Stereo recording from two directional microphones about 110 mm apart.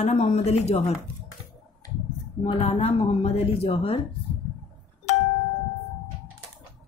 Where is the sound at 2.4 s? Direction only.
65° left (ahead or behind).